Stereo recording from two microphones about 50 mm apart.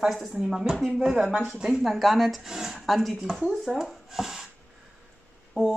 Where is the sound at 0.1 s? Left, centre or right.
Centre.